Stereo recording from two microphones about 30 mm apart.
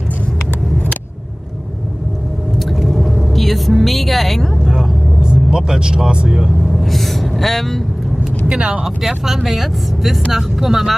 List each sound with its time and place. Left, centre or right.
3.3 s a woman's voice: centre
4.6 s vehicle: right
6.7 s gasp: centre
8.2 s vehicle: right
8.8 s speech: centre